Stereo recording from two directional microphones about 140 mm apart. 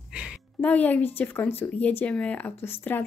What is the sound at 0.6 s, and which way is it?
Speech, 10° left (ahead or behind).